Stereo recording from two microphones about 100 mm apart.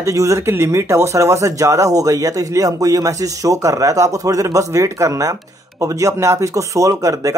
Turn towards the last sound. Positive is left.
turn(degrees=-35)  # may be behind; listen again after turning